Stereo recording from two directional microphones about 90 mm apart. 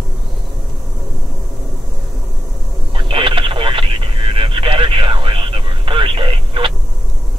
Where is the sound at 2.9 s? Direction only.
70° right (ahead or behind).